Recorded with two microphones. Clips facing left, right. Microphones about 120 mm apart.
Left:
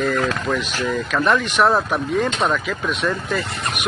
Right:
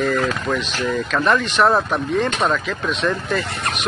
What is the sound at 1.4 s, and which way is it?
Speech, 10° left (ahead or behind).